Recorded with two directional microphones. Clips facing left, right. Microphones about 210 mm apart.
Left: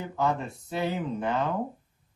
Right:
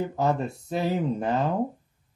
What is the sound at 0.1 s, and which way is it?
Speech, 40° right (ahead or behind).